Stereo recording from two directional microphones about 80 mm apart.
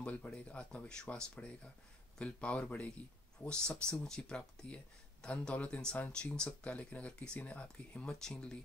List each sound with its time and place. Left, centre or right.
0.0 s speech: centre